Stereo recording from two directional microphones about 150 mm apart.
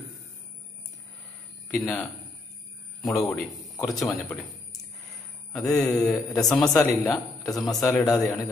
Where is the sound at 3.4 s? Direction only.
Centre (ahead or behind).